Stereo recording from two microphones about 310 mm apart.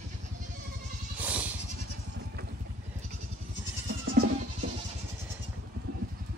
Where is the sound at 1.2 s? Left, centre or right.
Centre.